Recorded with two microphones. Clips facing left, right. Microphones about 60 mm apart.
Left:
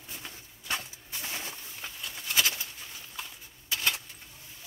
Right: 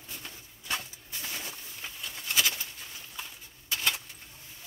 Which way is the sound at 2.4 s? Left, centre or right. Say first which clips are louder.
Even; centre.